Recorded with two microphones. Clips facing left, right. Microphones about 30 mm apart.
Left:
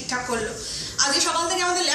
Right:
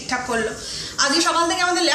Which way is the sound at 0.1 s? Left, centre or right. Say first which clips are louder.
Right 4 dB; right.